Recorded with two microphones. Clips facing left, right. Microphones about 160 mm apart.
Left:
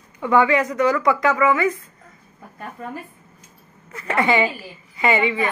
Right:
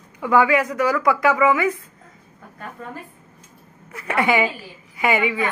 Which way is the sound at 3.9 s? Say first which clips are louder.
Even; 10° right (ahead or behind).